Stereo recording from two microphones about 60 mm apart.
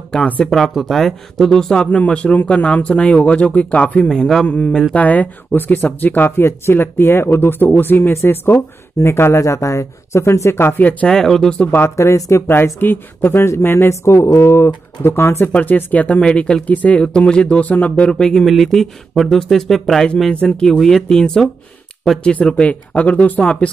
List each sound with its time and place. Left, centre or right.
0.5 s a man's voice: centre; by 4.1 s left
4.1 s speech: centre
4.5 s a man's voice: left
8.1 s speech: left
10.8 s a man's voice: left
11.1 s speech: centre
12.0 s speech: left
12.8 s speech: left
15.5 s a man's voice: left
16.2 s a man's voice: centre
18.1 s speech: centre
20.2 s a man's voice: centre